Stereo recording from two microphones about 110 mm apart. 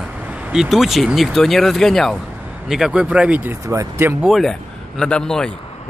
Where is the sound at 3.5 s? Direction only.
25° right (ahead or behind).